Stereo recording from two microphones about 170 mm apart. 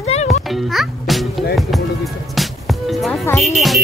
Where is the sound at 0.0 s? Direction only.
40° left (ahead or behind).